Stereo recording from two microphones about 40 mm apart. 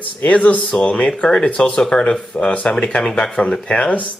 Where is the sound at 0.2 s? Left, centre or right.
Left; by 3.4 s centre.